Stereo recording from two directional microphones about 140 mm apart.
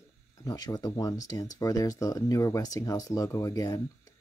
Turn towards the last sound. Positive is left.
turn(degrees=25)  # may be behind; listen again after turning